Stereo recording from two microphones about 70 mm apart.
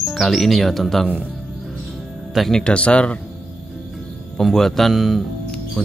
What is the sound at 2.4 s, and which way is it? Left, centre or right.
Speech, centre.